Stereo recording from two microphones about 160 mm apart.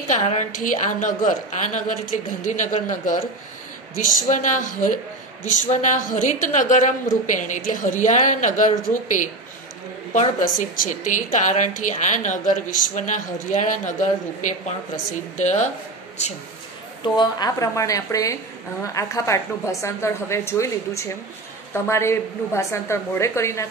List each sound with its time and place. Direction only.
0.1 s a woman's voice: 45° left (ahead or behind)
15.3 s a woman's voice: 45° left (ahead or behind)
17.0 s a woman's voice: 25° left (ahead or behind)